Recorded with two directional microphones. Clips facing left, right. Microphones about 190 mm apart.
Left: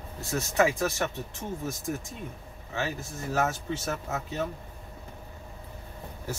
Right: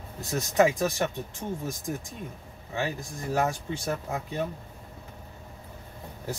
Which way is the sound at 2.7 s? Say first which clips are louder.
Right 1 dB; 15° right (ahead or behind).